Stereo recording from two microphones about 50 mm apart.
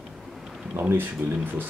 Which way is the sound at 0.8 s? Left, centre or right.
Right.